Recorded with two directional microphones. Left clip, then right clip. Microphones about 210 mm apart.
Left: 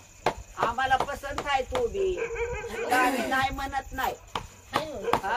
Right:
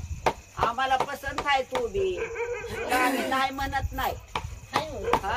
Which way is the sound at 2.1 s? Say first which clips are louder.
Even; 40° left (ahead or behind).